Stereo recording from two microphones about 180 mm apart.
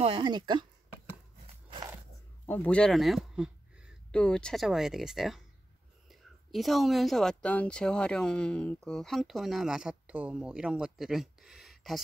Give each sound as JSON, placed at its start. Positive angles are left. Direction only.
{"t": 0.0, "sound": "speech", "side_deg": -25}
{"t": 1.7, "sound": "a sound", "side_deg": -20}
{"t": 2.4, "sound": "speech", "side_deg": 10}
{"t": 4.1, "sound": "speech", "side_deg": 5}